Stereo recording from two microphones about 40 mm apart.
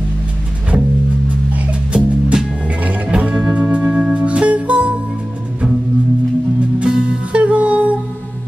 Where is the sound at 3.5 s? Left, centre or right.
Right.